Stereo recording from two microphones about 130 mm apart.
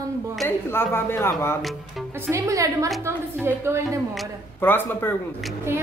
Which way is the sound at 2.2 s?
25° right (ahead or behind).